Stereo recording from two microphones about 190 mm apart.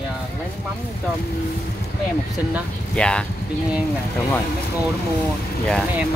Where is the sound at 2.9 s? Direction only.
5° left (ahead or behind).